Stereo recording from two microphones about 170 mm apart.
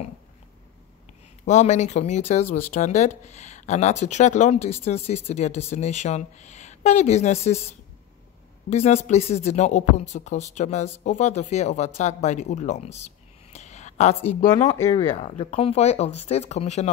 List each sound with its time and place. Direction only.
1.4 s speech: 45° left (ahead or behind)
13.5 s a sound: 40° left (ahead or behind)
15.1 s speech: 40° left (ahead or behind)